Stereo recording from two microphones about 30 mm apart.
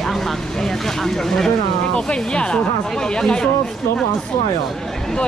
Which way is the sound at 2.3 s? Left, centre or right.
Left.